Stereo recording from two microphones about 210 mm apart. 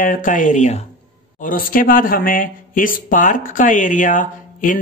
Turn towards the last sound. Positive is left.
turn(degrees=40)  # may be behind; listen again after turning